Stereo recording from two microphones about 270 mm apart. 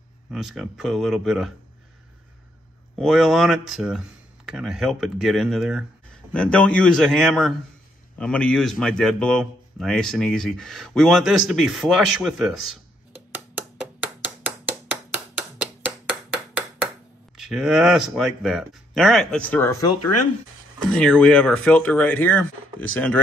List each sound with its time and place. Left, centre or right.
0.3 s speech: centre
3.0 s speech: centre
14.2 s a sound: centre
17.4 s speech: centre
20.0 s speech: left
20.9 s speech: centre